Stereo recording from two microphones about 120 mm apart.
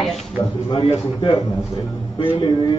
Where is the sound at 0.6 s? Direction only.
45° left (ahead or behind).